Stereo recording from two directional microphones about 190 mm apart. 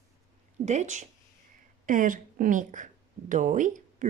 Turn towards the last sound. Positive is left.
turn(degrees=-40)  # may be behind; listen again after turning